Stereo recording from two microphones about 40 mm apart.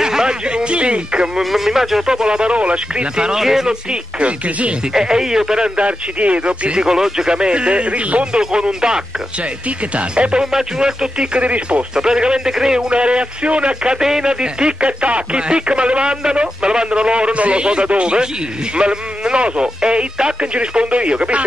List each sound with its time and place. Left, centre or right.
0.0 s a sound: centre
1.4 s speech: centre
2.0 s speech: centre
3.3 s speech: centre
3.9 s speech: right
4.9 s speech: centre
5.8 s speech: right
8.4 s speech: centre
10.4 s speech: centre; by 11.8 s right
11.9 s speech: centre
12.9 s speech: right